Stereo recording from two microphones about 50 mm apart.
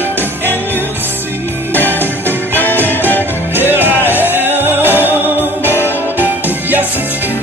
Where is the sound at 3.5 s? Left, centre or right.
Right.